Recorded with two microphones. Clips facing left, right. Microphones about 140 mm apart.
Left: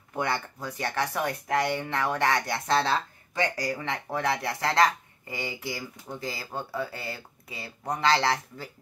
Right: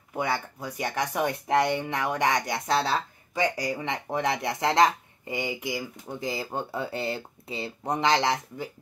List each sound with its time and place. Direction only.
0.1 s speech: 10° right (ahead or behind)